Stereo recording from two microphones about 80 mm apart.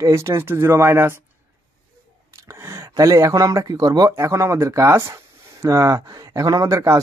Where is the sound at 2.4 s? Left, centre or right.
Right.